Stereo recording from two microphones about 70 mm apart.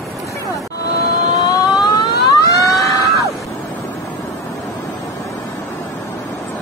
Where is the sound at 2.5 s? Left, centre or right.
Left.